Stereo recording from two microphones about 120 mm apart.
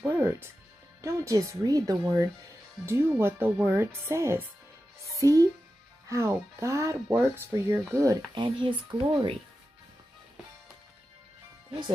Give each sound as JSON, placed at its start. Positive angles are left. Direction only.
{"t": 0.0, "sound": "speech", "side_deg": -20}
{"t": 8.4, "sound": "speech", "side_deg": -45}